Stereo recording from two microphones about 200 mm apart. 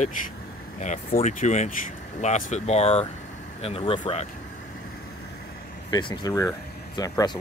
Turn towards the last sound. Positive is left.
turn(degrees=20)  # may be behind; listen again after turning